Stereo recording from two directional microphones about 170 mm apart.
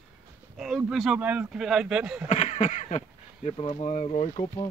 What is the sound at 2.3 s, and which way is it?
Speech, 45° left (ahead or behind).